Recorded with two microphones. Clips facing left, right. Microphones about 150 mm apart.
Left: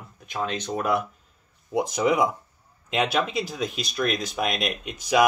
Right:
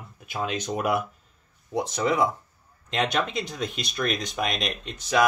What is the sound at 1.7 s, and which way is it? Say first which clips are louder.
Speech: left 3 dB; 10° left (ahead or behind).